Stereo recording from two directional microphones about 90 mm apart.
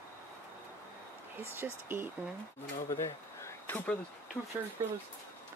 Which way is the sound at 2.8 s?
30° left (ahead or behind).